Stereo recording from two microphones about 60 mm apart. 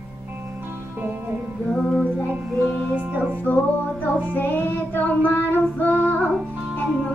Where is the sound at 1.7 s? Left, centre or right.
Centre.